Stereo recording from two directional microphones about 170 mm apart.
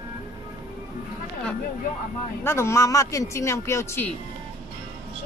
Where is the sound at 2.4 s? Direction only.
15° left (ahead or behind).